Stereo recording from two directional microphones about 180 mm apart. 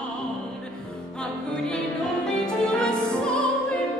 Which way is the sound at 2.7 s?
5° left (ahead or behind).